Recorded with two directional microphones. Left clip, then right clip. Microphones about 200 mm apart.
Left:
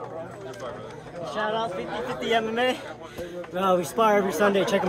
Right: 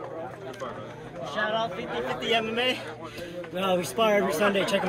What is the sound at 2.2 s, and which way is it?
Speech, 45° left (ahead or behind).